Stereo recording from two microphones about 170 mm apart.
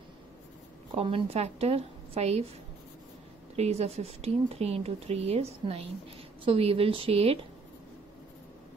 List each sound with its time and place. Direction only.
0.9 s speech: 35° right (ahead or behind)
3.5 s speech: 40° right (ahead or behind)